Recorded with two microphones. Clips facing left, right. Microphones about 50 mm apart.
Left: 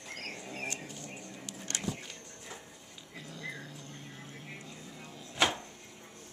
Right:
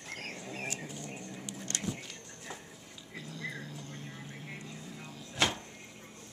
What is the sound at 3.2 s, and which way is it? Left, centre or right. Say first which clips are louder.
Dog: right 2 dB; centre.